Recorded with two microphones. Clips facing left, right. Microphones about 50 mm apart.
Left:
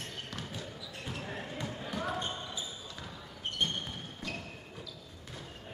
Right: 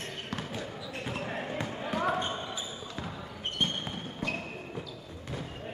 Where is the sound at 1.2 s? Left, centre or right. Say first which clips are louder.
Right 4 dB; right.